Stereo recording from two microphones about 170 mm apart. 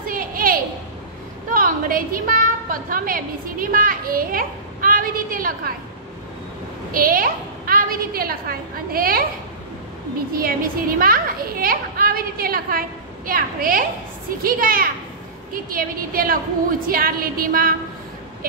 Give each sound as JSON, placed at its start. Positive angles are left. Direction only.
{"t": 0.0, "sound": "a sound", "side_deg": -55}
{"t": 1.5, "sound": "a woman's voice", "side_deg": -55}
{"t": 6.9, "sound": "a woman's voice", "side_deg": -55}
{"t": 10.3, "sound": "a child's voice", "side_deg": -55}